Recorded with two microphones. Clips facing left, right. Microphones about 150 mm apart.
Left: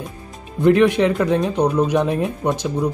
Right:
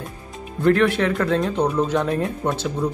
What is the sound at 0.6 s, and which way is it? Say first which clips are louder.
Speech: left 4 dB; 15° left (ahead or behind).